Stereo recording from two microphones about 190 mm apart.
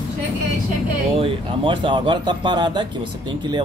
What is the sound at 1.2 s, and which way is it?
Speech, 25° right (ahead or behind).